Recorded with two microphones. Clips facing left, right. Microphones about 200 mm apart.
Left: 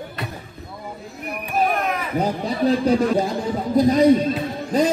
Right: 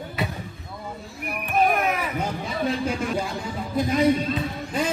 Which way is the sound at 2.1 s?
35° left (ahead or behind).